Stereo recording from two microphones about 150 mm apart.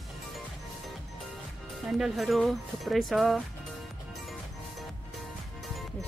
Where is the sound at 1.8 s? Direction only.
Centre (ahead or behind).